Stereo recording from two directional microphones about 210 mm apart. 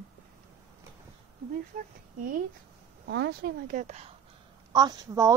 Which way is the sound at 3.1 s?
55° right (ahead or behind).